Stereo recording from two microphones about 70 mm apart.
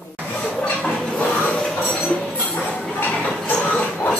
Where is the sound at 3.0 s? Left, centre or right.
Centre.